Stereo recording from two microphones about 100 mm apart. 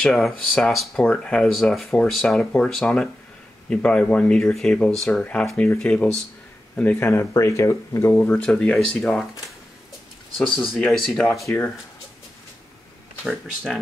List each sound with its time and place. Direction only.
0.0 s speech: centre (ahead or behind)
6.8 s speech: 20° left (ahead or behind)
8.1 s speech: 15° left (ahead or behind)
10.8 s speech: centre (ahead or behind)
13.2 s speech: 5° left (ahead or behind)